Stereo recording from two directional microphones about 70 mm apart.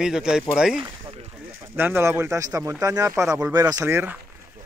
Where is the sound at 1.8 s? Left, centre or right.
Right.